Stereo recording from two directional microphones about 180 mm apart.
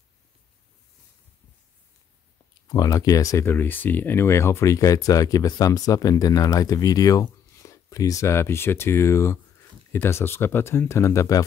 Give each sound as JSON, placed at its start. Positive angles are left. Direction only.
{"t": 2.7, "sound": "speech", "side_deg": 20}